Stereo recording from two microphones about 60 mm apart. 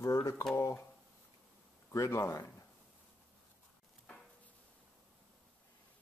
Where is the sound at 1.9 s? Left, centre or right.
Left.